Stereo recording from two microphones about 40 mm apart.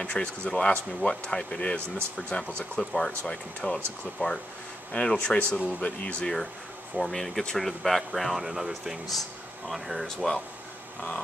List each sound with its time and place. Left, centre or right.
0.0 s speech: left
2.8 s speech: centre
3.3 s speech: left
4.2 s speech: left
7.0 s speech: centre
10.0 s speech: centre